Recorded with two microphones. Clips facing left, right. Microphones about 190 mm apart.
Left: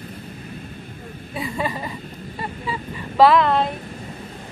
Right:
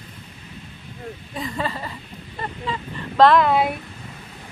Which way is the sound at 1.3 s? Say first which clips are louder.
Left 2 dB; 10° left (ahead or behind).